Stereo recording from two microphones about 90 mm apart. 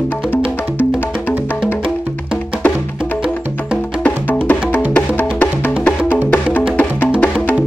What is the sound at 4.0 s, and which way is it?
Music, 20° left (ahead or behind).